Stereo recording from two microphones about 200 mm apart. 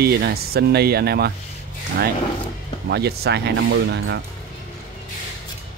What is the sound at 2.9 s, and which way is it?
Speech, 55° right (ahead or behind).